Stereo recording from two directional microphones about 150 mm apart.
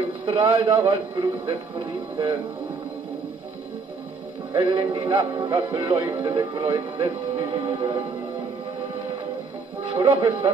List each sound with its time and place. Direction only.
0.2 s a man's voice: 35° right (ahead or behind)
4.5 s a man's voice: 30° right (ahead or behind)
9.9 s a man's voice: 35° right (ahead or behind)